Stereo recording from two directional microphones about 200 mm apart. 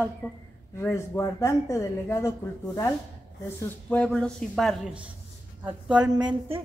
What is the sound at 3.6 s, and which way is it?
Speech, 5° left (ahead or behind).